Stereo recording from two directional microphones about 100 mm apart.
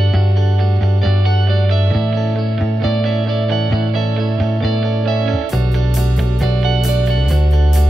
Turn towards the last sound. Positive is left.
turn(degrees=0)  # may be behind; listen again after turning